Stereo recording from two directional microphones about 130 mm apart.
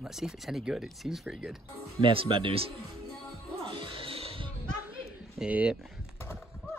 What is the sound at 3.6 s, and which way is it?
Music, 40° right (ahead or behind).